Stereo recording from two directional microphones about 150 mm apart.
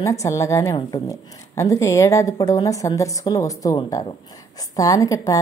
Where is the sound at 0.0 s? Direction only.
20° left (ahead or behind).